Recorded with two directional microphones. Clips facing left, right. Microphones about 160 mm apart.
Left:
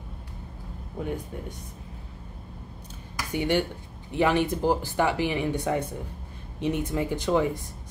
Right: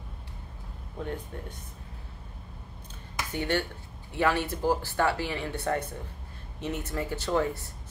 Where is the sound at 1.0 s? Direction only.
10° left (ahead or behind).